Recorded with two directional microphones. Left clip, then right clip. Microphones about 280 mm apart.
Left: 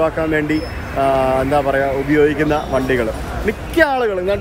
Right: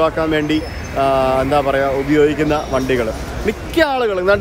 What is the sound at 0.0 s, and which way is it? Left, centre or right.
Speech, centre.